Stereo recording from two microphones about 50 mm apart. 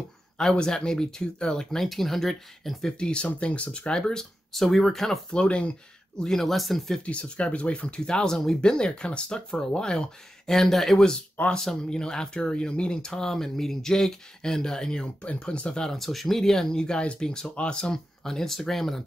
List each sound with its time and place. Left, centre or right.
0.4 s speech: centre
3.0 s speech: left
5.3 s speech: centre
6.2 s speech: centre
7.1 s speech: left
16.0 s speech: centre